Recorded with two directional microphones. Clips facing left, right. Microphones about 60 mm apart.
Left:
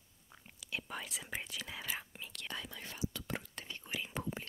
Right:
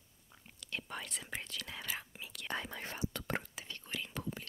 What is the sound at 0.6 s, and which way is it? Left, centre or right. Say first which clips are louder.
Whispering: even; centre.